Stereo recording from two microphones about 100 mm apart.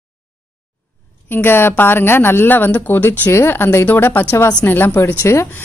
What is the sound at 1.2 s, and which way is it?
A woman's voice, 20° left (ahead or behind).